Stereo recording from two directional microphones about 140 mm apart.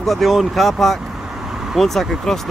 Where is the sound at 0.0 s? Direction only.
Centre (ahead or behind).